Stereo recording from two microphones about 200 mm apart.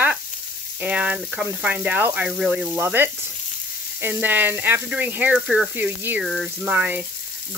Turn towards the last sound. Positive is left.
turn(degrees=-5)  # may be behind; listen again after turning